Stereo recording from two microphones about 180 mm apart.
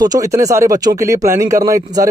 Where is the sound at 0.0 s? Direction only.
20° right (ahead or behind).